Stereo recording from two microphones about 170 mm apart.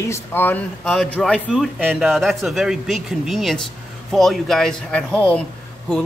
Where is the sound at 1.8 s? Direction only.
10° right (ahead or behind).